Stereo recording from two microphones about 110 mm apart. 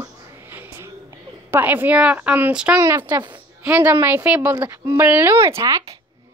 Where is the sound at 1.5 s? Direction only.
15° right (ahead or behind).